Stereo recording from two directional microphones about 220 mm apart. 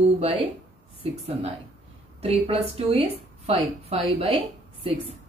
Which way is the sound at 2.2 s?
30° right (ahead or behind).